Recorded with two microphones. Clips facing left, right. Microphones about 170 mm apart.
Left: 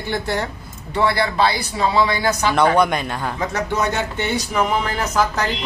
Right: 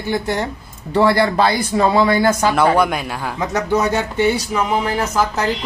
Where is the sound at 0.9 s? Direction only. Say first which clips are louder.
Right 4 dB; 40° right (ahead or behind).